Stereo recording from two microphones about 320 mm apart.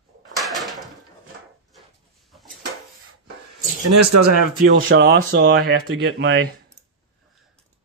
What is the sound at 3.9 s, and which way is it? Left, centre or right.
Speech, right.